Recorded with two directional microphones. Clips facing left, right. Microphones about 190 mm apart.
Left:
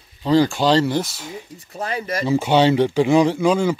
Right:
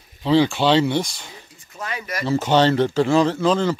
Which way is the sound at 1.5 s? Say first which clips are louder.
Left 4 dB; 35° left (ahead or behind).